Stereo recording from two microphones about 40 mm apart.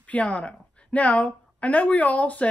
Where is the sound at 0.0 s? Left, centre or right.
Left.